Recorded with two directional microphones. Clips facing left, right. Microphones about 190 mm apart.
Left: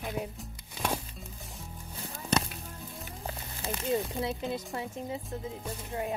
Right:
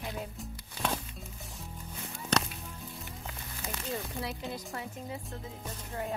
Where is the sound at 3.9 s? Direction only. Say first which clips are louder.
Left 7 dB; 20° left (ahead or behind).